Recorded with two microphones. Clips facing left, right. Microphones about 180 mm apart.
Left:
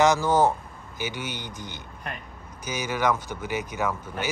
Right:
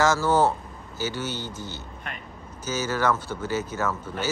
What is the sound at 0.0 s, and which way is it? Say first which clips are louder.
Speech: left 1 dB; 15° left (ahead or behind).